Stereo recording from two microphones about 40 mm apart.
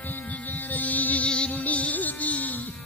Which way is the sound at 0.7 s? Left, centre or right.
Left.